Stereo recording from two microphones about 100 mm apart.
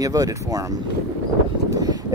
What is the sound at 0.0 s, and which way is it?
Speech, 35° right (ahead or behind).